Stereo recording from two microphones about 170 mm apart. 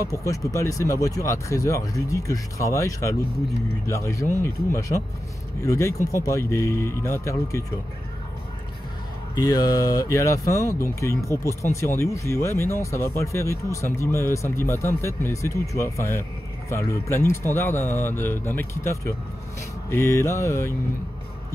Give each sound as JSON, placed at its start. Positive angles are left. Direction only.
{"t": 0.1, "sound": "speech", "side_deg": 20}
{"t": 9.3, "sound": "speech", "side_deg": 20}